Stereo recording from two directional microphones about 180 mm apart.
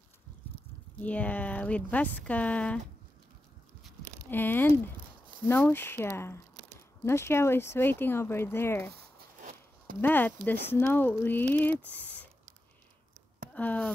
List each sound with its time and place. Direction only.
1.0 s speech: 10° left (ahead or behind)
4.3 s speech: 10° left (ahead or behind)
9.4 s a sound: 45° right (ahead or behind)
9.9 s speech: 10° left (ahead or behind)
13.5 s speech: 10° left (ahead or behind)